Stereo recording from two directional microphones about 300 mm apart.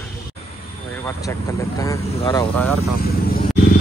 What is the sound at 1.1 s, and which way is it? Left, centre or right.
Speech, centre.